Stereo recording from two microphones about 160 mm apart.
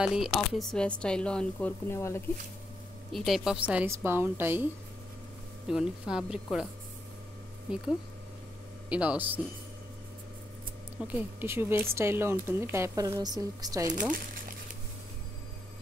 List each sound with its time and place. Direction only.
0.0 s speech: 5° right (ahead or behind); by 2.2 s 15° left (ahead or behind)
3.1 s speech: centre (ahead or behind)
5.7 s speech: 5° right (ahead or behind)
8.8 s speech: 10° right (ahead or behind)
11.0 s speech: 10° right (ahead or behind)